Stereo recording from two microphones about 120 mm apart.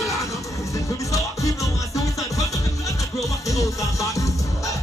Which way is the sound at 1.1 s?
25° left (ahead or behind).